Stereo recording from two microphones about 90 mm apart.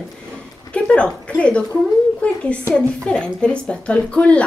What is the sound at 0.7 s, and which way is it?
A woman's voice, 10° left (ahead or behind).